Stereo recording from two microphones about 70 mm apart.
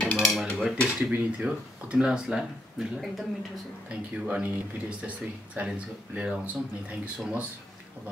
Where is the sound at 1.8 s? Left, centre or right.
Centre.